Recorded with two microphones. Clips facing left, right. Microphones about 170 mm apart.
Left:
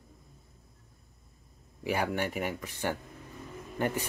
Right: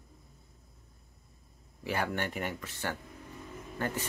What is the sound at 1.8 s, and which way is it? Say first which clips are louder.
Speech: left 3 dB; 10° left (ahead or behind).